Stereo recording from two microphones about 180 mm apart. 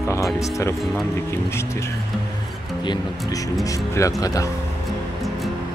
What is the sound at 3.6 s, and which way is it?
Speech, 20° left (ahead or behind).